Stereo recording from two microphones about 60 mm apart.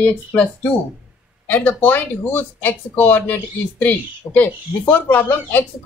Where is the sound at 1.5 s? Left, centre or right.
Left.